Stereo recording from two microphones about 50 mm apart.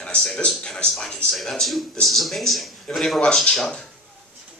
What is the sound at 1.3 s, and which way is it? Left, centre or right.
Speech, centre.